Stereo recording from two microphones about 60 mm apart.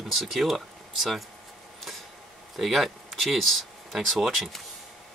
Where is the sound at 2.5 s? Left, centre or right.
Centre.